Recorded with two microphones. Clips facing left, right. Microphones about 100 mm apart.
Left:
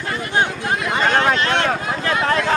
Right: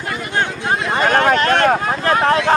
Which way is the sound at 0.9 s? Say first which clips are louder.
Right 3 dB; 50° right (ahead or behind).